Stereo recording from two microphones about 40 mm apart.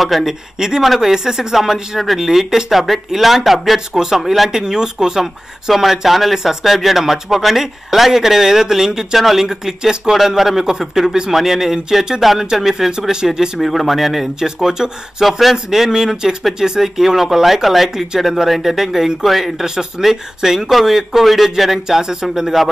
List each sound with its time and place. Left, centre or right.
0.0 s speech: centre
3.9 s speech: centre
4.2 s speech: centre
4.5 s speech: centre
13.1 s speech: centre
13.6 s speech: centre
14.4 s speech: centre
15.2 s speech: centre
19.6 s speech: centre
21.8 s speech: centre